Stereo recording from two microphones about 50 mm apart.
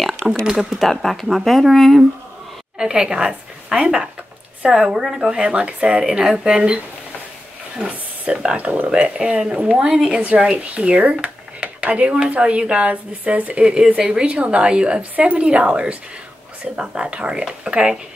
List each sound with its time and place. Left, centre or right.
0.5 s a woman's voice: centre
0.7 s speech: centre
2.8 s a woman's voice: centre
5.4 s speech: right
8.3 s a woman's voice: centre
10.4 s speech: right